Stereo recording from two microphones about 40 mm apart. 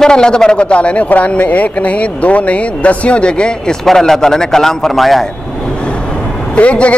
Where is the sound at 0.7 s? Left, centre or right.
Left.